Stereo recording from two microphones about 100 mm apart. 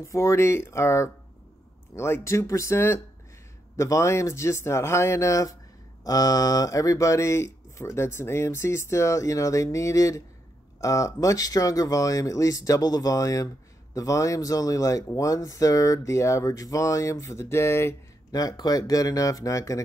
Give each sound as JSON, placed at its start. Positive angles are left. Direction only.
{"t": 0.0, "sound": "speech", "side_deg": 30}
{"t": 18.3, "sound": "speech", "side_deg": 40}